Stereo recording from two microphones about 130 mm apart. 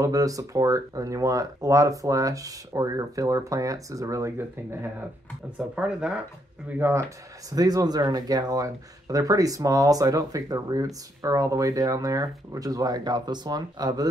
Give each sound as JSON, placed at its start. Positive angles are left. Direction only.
{"t": 0.0, "sound": "speech", "side_deg": -25}
{"t": 5.8, "sound": "speech", "side_deg": -10}
{"t": 6.8, "sound": "speech", "side_deg": -20}